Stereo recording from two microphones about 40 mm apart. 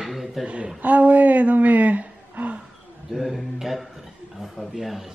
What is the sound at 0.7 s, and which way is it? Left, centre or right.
Speech, right.